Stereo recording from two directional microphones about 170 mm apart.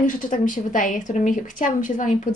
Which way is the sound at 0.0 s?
50° left (ahead or behind).